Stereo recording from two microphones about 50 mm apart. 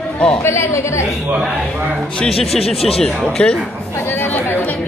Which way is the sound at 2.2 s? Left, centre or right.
Centre.